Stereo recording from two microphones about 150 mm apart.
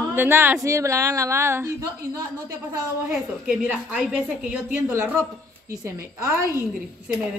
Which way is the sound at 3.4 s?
5° right (ahead or behind).